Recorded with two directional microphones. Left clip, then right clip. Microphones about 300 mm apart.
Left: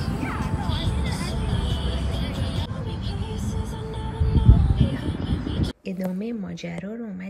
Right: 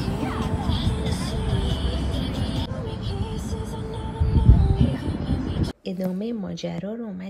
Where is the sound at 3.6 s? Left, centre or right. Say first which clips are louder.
Right 1 dB; centre.